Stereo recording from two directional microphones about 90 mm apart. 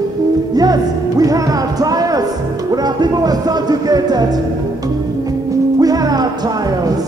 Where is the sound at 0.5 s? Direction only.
45° right (ahead or behind).